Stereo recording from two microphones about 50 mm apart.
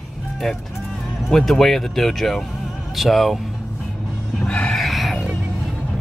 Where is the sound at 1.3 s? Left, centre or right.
Centre.